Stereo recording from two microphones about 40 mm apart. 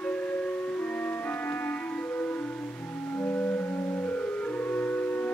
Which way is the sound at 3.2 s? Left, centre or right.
Left.